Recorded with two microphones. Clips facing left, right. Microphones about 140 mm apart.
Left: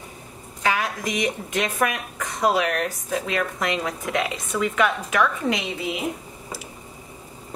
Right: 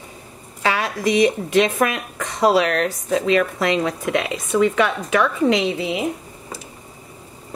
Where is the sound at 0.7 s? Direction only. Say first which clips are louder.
Right 2 dB; 90° right.